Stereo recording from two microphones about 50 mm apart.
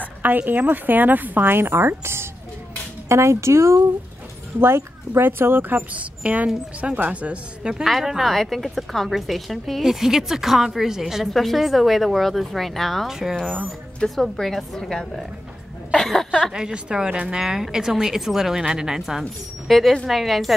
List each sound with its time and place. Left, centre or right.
0.2 s a woman's voice: right
3.1 s speech: right
4.6 s a woman's voice: right
7.7 s a woman's voice: centre
14.0 s a woman's voice: centre
16.5 s a woman's voice: centre